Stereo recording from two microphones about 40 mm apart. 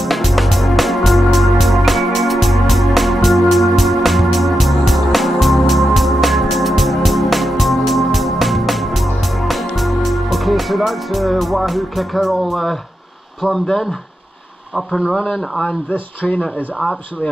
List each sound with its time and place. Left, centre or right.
0.0 s music: centre
15.0 s speech: centre
15.2 s speech: centre
15.9 s speech: left